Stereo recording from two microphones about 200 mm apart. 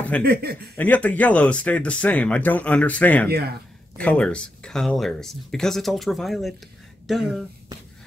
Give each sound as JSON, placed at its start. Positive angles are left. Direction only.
{"t": 0.2, "sound": "speech", "side_deg": -50}
{"t": 0.7, "sound": "speech", "side_deg": 10}
{"t": 3.3, "sound": "speech", "side_deg": -50}
{"t": 4.0, "sound": "speech", "side_deg": 5}